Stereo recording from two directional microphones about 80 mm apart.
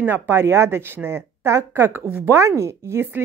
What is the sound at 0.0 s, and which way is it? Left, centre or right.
Speech, right.